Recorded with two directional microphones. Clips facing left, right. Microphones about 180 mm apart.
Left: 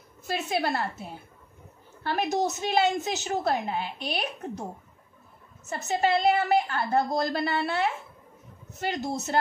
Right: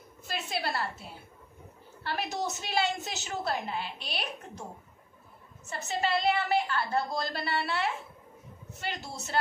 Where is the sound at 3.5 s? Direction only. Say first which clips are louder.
Left 4 dB; 50° left (ahead or behind).